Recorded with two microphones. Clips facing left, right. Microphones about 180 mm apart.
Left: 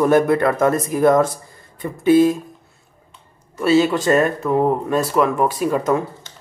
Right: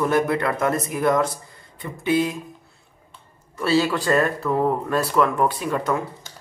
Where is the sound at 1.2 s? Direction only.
50° left (ahead or behind).